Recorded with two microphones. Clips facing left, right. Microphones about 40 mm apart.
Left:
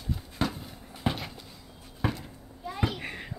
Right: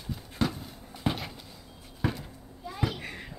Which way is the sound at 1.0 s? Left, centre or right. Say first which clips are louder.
Even; left.